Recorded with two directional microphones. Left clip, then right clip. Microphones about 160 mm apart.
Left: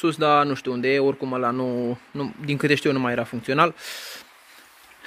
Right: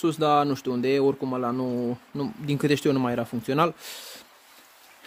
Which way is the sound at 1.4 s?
10° right (ahead or behind).